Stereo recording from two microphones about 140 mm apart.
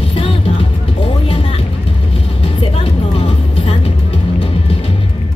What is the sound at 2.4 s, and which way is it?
Music, 40° left (ahead or behind).